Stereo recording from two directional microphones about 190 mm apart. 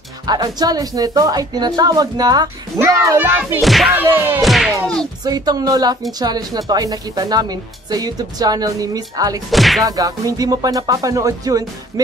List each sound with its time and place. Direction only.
0.3 s speech: 20° right (ahead or behind)
3.6 s speech: centre (ahead or behind)
4.4 s music: centre (ahead or behind)
5.2 s speech: 20° right (ahead or behind)
9.5 s speech: centre (ahead or behind)
9.8 s speech: 20° right (ahead or behind)